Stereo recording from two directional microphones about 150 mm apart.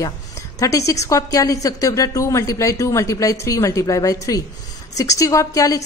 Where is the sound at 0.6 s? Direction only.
20° left (ahead or behind).